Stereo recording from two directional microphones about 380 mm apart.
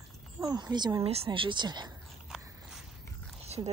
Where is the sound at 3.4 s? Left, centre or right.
Centre.